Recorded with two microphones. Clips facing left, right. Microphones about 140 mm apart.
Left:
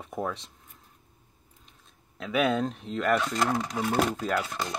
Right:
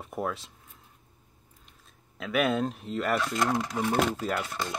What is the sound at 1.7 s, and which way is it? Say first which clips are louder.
Speech: even; centre (ahead or behind).